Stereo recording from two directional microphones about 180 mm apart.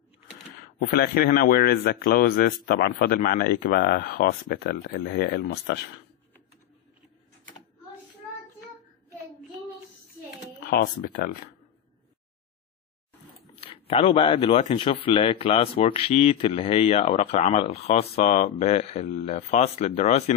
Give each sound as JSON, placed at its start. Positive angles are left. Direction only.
{"t": 0.7, "sound": "speech", "side_deg": 55}
{"t": 10.6, "sound": "speech", "side_deg": 55}
{"t": 13.6, "sound": "speech", "side_deg": 30}